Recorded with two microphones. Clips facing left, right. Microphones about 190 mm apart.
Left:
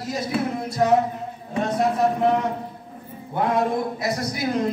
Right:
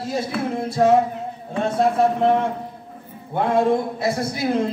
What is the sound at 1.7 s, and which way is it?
Speech, 25° right (ahead or behind).